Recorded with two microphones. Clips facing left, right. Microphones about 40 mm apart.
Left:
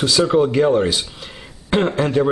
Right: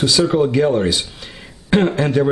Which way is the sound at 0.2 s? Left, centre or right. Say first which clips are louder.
Left 1 dB; centre.